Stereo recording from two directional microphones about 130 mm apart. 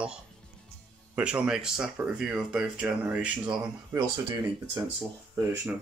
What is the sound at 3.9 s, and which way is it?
Speech, 30° right (ahead or behind).